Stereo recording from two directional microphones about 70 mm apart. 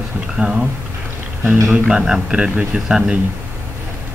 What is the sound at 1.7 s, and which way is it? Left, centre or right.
Speech, centre.